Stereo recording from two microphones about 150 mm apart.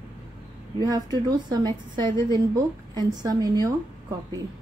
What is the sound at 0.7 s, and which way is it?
A woman's voice, 25° right (ahead or behind).